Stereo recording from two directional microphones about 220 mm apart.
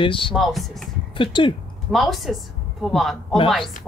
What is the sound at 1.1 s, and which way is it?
Speech, 20° left (ahead or behind).